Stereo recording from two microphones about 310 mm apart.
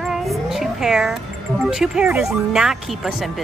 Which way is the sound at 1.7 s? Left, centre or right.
Centre.